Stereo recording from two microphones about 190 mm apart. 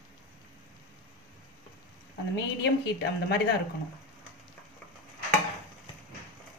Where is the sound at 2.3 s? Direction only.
60° left (ahead or behind).